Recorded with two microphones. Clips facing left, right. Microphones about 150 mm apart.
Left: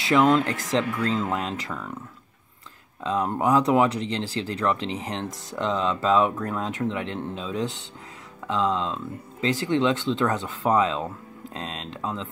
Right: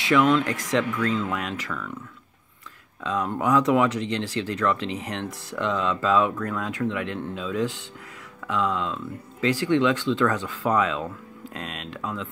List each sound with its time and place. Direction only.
0.0 s speech: 35° left (ahead or behind)
3.0 s speech: 30° left (ahead or behind)